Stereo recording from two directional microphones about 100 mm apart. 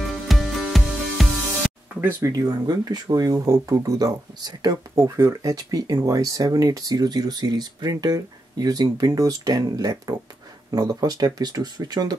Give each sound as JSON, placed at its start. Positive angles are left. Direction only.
{"t": 0.3, "sound": "music", "side_deg": 0}
{"t": 2.2, "sound": "speech", "side_deg": -35}
{"t": 4.9, "sound": "speech", "side_deg": -30}